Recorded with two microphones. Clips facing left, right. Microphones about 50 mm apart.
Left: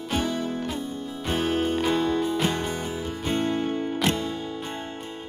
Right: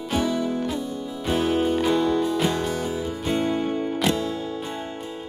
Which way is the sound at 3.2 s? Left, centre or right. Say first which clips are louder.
Right 1 dB; centre.